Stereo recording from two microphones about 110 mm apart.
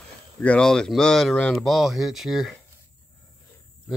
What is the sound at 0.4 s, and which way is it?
Speech, 10° left (ahead or behind).